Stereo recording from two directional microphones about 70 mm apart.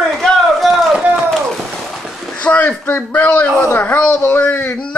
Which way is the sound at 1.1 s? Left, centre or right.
Centre.